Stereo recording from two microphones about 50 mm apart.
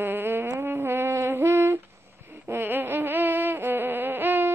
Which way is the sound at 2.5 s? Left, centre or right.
Right.